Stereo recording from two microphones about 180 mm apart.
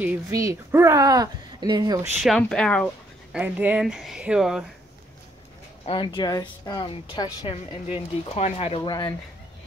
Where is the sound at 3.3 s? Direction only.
10° right (ahead or behind).